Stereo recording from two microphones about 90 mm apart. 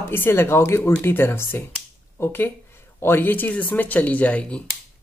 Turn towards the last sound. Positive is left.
turn(degrees=15)  # may be behind; listen again after turning